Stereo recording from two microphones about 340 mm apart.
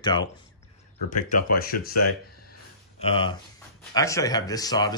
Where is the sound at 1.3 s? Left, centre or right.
Left.